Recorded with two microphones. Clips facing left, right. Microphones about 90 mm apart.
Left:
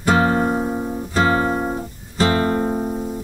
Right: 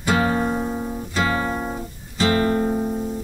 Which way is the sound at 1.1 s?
35° left (ahead or behind).